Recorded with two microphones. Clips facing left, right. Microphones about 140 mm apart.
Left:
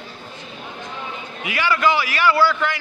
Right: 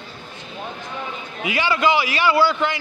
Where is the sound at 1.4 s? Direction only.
20° right (ahead or behind).